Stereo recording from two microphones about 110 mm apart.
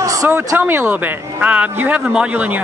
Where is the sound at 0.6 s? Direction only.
20° right (ahead or behind).